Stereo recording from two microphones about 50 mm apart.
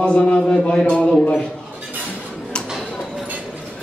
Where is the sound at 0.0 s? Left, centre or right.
Centre.